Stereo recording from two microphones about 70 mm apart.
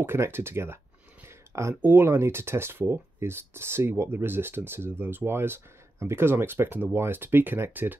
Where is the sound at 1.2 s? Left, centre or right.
Right.